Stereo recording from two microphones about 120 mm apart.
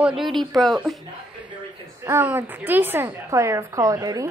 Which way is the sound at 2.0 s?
15° right (ahead or behind).